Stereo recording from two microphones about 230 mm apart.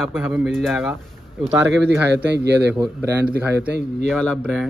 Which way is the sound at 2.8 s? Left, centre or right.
Centre.